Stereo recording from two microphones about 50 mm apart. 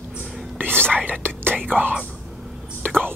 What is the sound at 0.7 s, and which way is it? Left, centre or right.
Whispering, centre.